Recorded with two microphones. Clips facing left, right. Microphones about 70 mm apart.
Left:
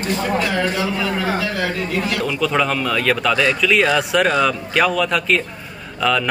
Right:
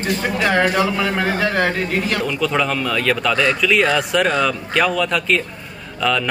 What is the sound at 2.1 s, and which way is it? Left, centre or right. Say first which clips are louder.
Speech: left 3 dB; centre.